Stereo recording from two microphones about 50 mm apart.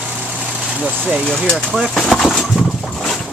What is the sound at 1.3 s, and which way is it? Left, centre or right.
Speech, left.